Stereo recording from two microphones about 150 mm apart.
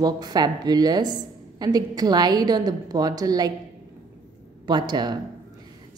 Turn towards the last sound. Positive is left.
turn(degrees=-30)  # may be behind; listen again after turning